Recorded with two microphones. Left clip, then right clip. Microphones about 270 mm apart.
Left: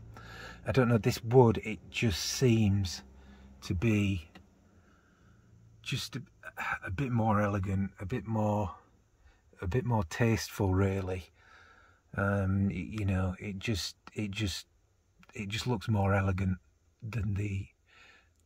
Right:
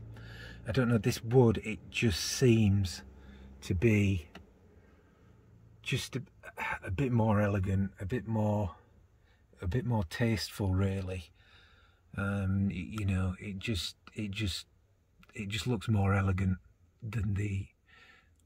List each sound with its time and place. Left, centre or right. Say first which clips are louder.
0.1 s speech: left 3 dB; centre
5.9 s speech: right 1 dB; left
7.7 s speech: right 1 dB; centre
17.1 s a sound: even; centre